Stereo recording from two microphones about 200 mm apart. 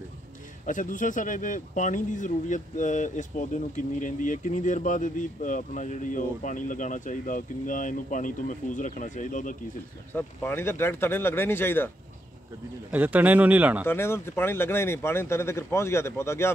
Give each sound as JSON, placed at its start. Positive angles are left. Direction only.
{"t": 0.7, "sound": "speech", "side_deg": 40}
{"t": 10.1, "sound": "speech", "side_deg": 10}
{"t": 12.9, "sound": "speech", "side_deg": -10}
{"t": 13.8, "sound": "speech", "side_deg": 10}